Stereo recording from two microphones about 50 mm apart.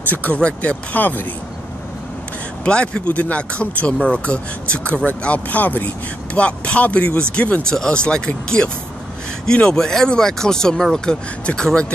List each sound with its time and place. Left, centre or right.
0.1 s speech: left
2.6 s speech: centre
9.5 s speech: centre